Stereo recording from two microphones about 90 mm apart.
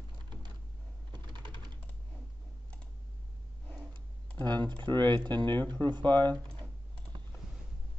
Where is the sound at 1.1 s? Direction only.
55° right (ahead or behind).